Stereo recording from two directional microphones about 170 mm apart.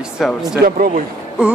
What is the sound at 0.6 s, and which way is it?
Speech, 60° right (ahead or behind).